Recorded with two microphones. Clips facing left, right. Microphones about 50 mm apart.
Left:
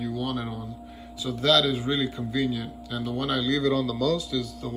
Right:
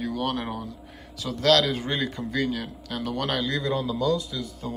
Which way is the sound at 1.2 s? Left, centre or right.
Right.